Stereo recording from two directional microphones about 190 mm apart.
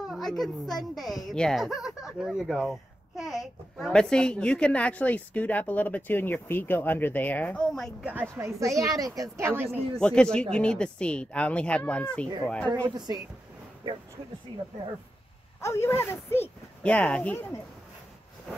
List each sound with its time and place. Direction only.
0.1 s a woman's voice: centre (ahead or behind)
8.1 s a woman's voice: 10° right (ahead or behind)
9.7 s a woman's voice: 5° left (ahead or behind)
12.6 s speech: 20° right (ahead or behind)
15.6 s speech: 15° left (ahead or behind)